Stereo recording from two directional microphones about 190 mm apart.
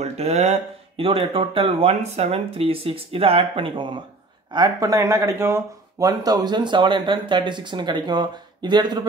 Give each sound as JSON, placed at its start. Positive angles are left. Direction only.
{"t": 0.0, "sound": "speech", "side_deg": -35}